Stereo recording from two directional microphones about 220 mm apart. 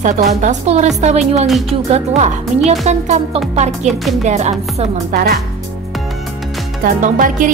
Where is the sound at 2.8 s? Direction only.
30° right (ahead or behind).